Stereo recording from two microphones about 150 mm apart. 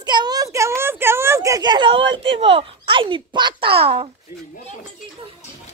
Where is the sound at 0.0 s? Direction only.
30° right (ahead or behind).